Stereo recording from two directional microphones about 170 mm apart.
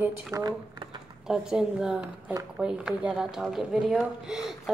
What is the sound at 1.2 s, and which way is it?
Speech, 5° right (ahead or behind).